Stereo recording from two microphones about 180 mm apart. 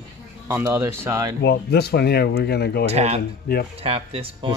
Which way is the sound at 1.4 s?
60° left (ahead or behind).